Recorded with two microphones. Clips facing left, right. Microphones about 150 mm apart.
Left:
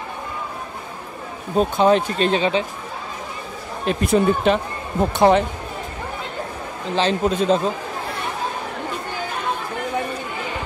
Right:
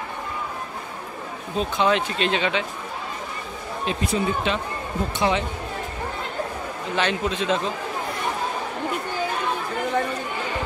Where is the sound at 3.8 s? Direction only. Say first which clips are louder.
Left 7 dB; 50° left (ahead or behind).